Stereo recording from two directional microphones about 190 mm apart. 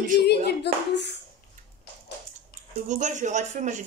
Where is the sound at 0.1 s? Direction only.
45° right (ahead or behind).